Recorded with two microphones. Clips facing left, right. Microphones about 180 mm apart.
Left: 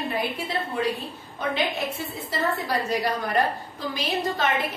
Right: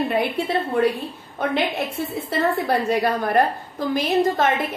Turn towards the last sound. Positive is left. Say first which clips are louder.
# right 7 dB
turn(degrees=-50)  # may be behind; listen again after turning